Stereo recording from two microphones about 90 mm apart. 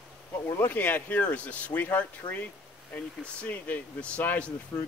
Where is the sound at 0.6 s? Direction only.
20° left (ahead or behind).